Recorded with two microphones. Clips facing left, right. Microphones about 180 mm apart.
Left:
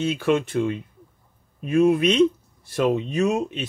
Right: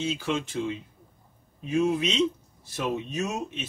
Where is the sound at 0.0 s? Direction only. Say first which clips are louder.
Left 7 dB; 60° left (ahead or behind).